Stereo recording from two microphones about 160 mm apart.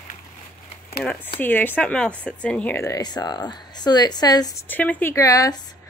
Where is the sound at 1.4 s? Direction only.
10° left (ahead or behind).